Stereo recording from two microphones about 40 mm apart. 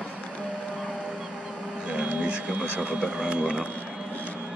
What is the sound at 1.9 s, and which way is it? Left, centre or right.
Music, right.